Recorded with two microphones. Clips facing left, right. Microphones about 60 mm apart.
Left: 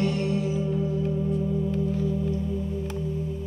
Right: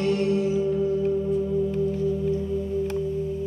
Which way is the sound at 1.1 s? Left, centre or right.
Centre.